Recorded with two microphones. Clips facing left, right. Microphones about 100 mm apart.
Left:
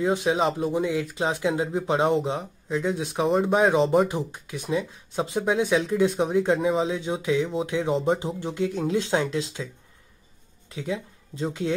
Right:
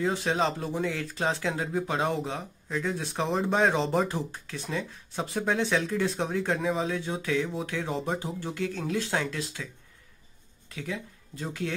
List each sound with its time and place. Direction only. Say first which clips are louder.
0.0 s speech: left 4 dB; 15° left (ahead or behind)
10.7 s speech: left 5 dB; 20° left (ahead or behind)